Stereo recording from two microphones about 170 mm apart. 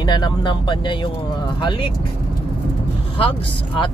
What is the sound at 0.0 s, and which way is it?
Speech, 25° left (ahead or behind).